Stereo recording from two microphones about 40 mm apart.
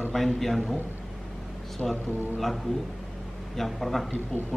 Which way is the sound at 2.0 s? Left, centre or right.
Right.